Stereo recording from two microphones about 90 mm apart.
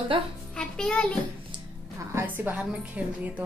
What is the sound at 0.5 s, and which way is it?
Speech, 10° left (ahead or behind).